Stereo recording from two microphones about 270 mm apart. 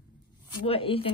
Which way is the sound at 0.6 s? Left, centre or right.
Left.